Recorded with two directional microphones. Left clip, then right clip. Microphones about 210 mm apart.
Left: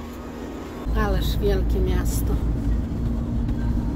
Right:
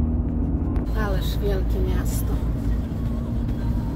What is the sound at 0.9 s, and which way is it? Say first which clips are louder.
Vehicle: left 6 dB; 15° left (ahead or behind).